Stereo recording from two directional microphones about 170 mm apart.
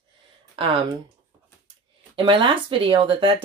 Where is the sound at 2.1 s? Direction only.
30° right (ahead or behind).